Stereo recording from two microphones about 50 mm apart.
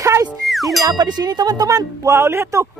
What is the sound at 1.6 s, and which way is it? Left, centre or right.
Speech, right.